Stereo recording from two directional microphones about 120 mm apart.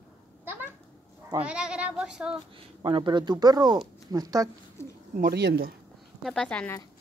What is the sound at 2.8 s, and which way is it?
Speech, 45° right (ahead or behind).